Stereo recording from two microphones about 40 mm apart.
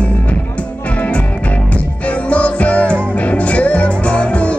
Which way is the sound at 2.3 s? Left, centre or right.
Left.